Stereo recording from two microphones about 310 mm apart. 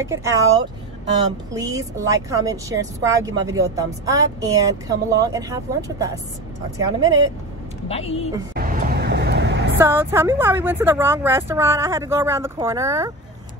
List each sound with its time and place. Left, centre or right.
0.0 s speech: centre
1.5 s speech: centre
7.9 s speech: centre
8.5 s vehicle: right
9.8 s speech: centre